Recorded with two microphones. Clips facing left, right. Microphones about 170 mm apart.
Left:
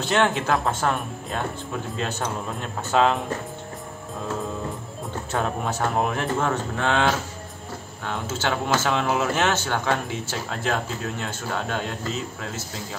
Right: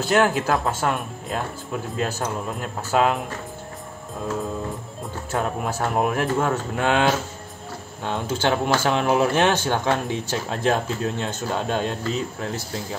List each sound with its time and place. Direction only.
0.0 s speech: 5° right (ahead or behind)
5.3 s speech: 5° right (ahead or behind)